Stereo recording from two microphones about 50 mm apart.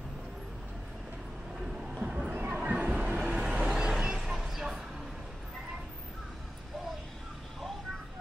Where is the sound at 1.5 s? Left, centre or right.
Centre.